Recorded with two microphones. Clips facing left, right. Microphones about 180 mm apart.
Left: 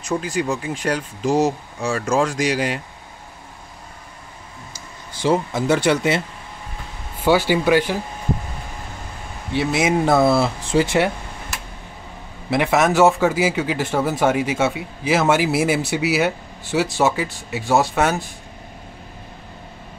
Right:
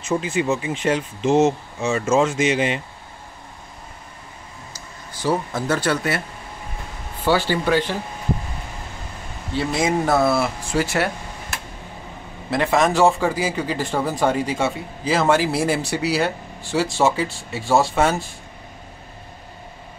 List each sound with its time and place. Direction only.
0.1 s speech: 5° right (ahead or behind)
4.7 s a sound: 25° left (ahead or behind)
5.5 s a man's voice: 15° left (ahead or behind)
7.2 s a man's voice: 15° left (ahead or behind)
9.7 s a man's voice: 5° left (ahead or behind)
10.0 s speech: 20° left (ahead or behind)
12.4 s a man's voice: 10° left (ahead or behind)